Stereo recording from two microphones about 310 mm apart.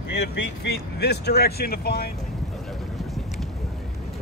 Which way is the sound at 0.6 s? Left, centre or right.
Left.